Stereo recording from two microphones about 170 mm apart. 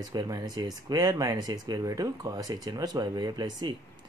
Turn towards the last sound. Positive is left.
turn(degrees=-25)  # may be behind; listen again after turning